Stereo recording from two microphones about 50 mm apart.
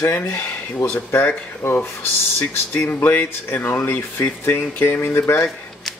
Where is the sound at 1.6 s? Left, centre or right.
Left.